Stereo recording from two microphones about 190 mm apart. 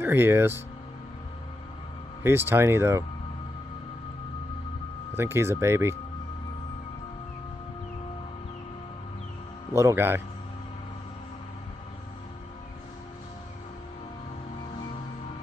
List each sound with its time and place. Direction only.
0.0 s speech: 10° right (ahead or behind)
2.2 s speech: 10° right (ahead or behind)
5.1 s speech: 10° right (ahead or behind)
9.8 s speech: 15° right (ahead or behind)